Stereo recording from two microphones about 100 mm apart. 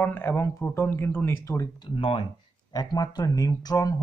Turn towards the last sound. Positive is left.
turn(degrees=40)  # may be behind; listen again after turning